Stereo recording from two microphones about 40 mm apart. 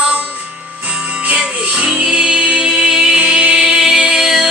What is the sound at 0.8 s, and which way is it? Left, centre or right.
Music, right.